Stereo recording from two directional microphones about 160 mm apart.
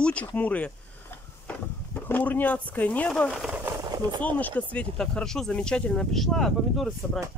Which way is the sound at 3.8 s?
25° right (ahead or behind).